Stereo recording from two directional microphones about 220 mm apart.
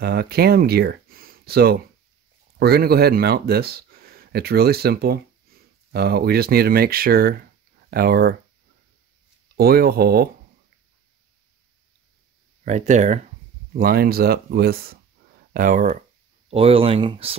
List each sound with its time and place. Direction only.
0.0 s speech: 45° right (ahead or behind)
9.6 s speech: 45° right (ahead or behind)
12.6 s speech: 35° right (ahead or behind)